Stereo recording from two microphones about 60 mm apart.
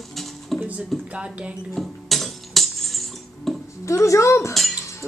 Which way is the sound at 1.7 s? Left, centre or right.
Centre.